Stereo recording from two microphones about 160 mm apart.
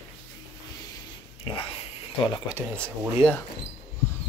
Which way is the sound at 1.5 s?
30° left (ahead or behind).